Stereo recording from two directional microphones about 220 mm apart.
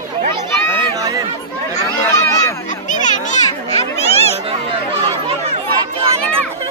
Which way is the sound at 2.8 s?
35° left (ahead or behind).